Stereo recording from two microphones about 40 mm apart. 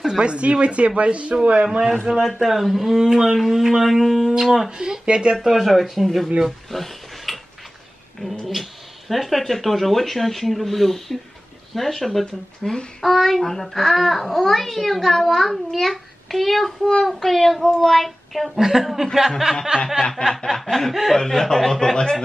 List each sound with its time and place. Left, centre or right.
0.2 s speech: right
2.4 s speech: centre
4.6 s speech: centre
5.5 s a child's voice: centre
6.4 s a sound: centre
9.1 s a child's voice: centre
20.0 s speech: centre
20.9 s a child's voice: centre
21.2 s speech: centre